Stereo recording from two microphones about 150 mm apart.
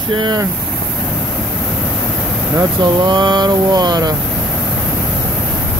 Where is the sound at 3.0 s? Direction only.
30° right (ahead or behind).